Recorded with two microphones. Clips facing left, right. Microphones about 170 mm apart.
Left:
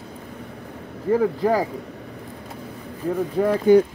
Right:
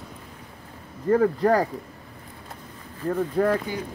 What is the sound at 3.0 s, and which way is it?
Speech, 10° left (ahead or behind).